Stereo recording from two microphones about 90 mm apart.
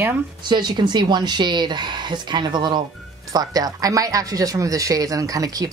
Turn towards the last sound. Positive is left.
turn(degrees=-40)  # may be behind; listen again after turning